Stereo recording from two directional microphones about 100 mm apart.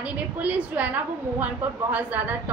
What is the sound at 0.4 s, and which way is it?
A woman's voice, 15° right (ahead or behind).